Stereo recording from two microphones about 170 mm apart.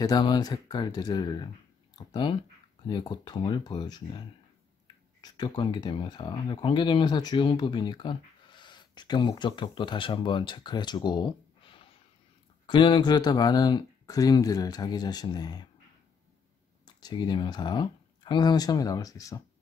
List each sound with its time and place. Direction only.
0.0 s speech: 25° left (ahead or behind)
2.0 s a sound: 25° left (ahead or behind)
2.9 s speech: 25° left (ahead or behind)
16.8 s speech: 25° left (ahead or behind)